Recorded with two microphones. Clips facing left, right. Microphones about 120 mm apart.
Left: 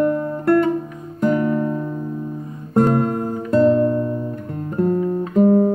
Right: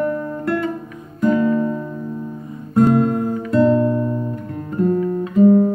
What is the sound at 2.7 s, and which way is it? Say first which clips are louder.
Guitar: right 2 dB; 50° left (ahead or behind).